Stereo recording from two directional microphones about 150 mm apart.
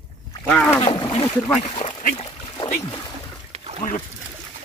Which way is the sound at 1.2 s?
10° left (ahead or behind).